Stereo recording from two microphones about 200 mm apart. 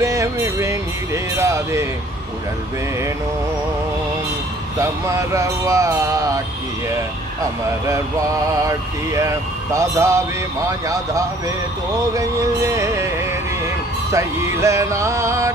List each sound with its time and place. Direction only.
0.0 s speech: 15° right (ahead or behind)
4.7 s speech: 15° right (ahead or behind)
7.8 s speech: 15° right (ahead or behind)